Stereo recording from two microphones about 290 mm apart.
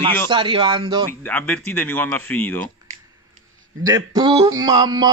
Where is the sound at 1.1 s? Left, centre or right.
Centre.